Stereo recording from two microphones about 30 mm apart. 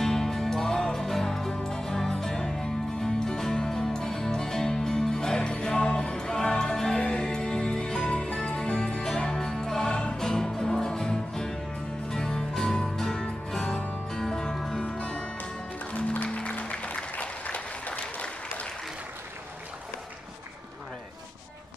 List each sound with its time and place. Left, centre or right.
0.0 s music: centre
8.1 s music: left
9.0 s music: left
9.8 s music: left
10.1 s music: centre
14.9 s music: left
16.3 s music: left
17.2 s applause: left